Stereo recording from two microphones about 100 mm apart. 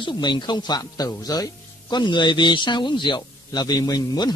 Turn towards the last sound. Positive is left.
turn(degrees=40)  # may be behind; listen again after turning